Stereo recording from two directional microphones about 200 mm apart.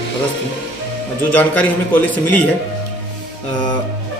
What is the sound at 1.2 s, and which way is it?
A man's voice, 10° left (ahead or behind).